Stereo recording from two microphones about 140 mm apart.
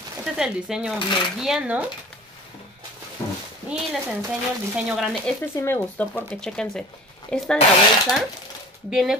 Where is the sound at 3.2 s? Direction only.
20° left (ahead or behind).